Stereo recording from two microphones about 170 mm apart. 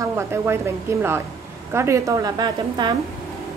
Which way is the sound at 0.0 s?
15° right (ahead or behind).